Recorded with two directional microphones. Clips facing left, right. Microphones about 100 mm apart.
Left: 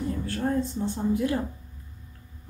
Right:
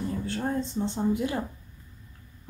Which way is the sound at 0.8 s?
20° right (ahead or behind).